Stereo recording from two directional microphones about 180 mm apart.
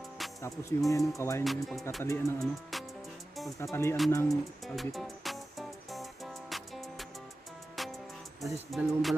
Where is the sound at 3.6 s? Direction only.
15° left (ahead or behind).